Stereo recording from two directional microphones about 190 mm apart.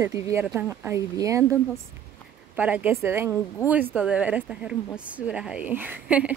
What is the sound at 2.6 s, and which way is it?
Speech, 5° right (ahead or behind).